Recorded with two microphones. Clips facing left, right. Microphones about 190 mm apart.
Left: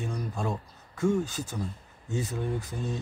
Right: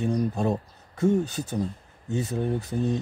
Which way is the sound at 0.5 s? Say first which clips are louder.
Right 6 dB; 35° right (ahead or behind).